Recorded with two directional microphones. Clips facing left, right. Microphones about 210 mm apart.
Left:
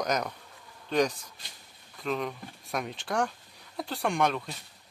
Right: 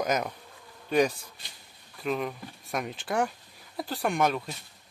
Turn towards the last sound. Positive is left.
turn(degrees=-5)  # may be behind; listen again after turning